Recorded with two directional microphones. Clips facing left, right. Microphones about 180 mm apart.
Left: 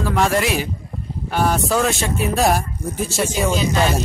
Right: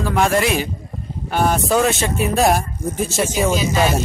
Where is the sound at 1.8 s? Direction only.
Centre (ahead or behind).